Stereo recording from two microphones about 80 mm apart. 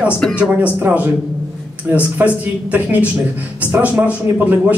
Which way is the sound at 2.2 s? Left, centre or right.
Right.